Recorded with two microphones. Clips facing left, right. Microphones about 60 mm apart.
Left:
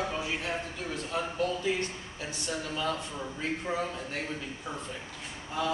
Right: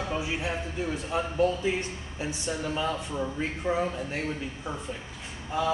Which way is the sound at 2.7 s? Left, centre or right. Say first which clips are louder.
Right 3 dB; centre.